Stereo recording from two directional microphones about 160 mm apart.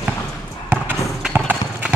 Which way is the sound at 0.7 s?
10° right (ahead or behind).